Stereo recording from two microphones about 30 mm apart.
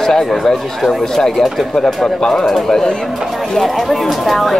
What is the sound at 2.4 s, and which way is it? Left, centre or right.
Speech, centre.